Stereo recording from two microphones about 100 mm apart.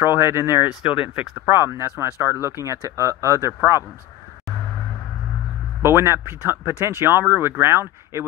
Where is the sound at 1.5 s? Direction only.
25° right (ahead or behind).